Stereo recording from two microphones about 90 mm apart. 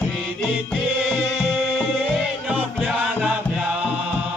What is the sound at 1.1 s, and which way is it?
Music, 5° right (ahead or behind).